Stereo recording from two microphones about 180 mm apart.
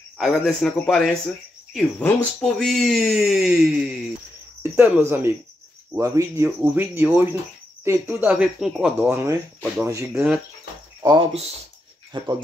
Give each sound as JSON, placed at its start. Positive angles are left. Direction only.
{"t": 0.2, "sound": "speech", "side_deg": 0}
{"t": 11.0, "sound": "speech", "side_deg": -20}